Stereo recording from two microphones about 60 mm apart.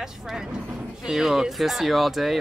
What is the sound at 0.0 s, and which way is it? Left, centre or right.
Speech, centre.